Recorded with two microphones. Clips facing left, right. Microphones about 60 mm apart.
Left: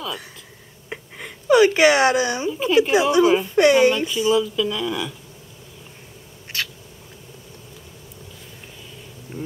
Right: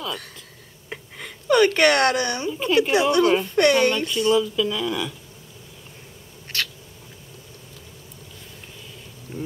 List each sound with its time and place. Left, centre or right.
0.8 s speech: centre
9.3 s insect: centre